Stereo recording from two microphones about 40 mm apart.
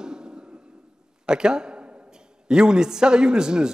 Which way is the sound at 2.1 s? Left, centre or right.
Centre.